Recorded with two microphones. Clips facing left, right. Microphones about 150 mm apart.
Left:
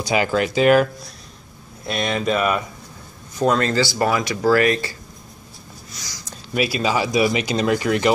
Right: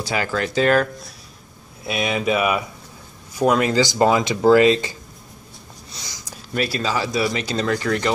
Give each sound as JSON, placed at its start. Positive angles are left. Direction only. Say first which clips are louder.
{"t": 0.0, "sound": "speech", "louder": "left 4 dB", "side_deg": 15}
{"t": 1.9, "sound": "speech", "louder": "even", "side_deg": -5}
{"t": 5.9, "sound": "a sound", "louder": "right 1 dB", "side_deg": -25}
{"t": 6.5, "sound": "speech", "louder": "left 2 dB", "side_deg": 10}